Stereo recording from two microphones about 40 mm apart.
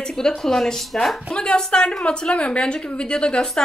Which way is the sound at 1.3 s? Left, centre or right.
Left.